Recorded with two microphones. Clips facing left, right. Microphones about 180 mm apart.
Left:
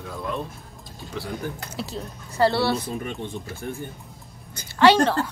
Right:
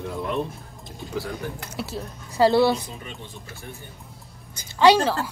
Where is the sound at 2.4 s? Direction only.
15° right (ahead or behind).